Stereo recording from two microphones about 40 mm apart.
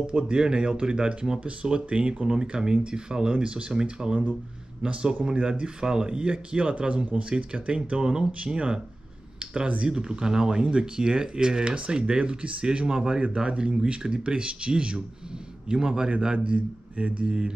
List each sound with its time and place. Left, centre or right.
0.0 s speech: right
1.4 s speech: right
8.0 s speech: centre
9.4 s a sound: right
9.8 s speech: centre
12.7 s speech: right
16.9 s speech: right